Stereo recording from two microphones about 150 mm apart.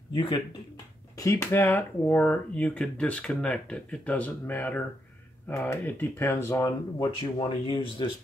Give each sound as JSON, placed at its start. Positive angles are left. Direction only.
{"t": 0.1, "sound": "speech", "side_deg": 35}
{"t": 1.1, "sound": "speech", "side_deg": 20}
{"t": 7.3, "sound": "speech", "side_deg": 35}